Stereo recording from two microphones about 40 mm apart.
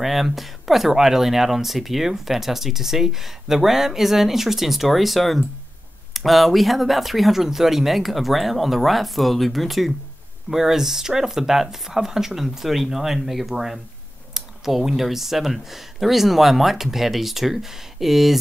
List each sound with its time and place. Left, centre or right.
0.0 s speech: centre